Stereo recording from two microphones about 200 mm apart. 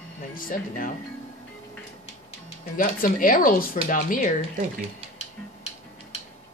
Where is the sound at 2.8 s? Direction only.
45° left (ahead or behind).